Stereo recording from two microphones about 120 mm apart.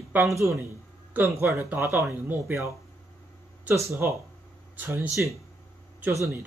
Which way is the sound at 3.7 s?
25° right (ahead or behind).